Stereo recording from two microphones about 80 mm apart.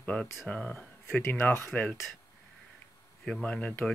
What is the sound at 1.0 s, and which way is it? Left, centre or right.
Speech, left.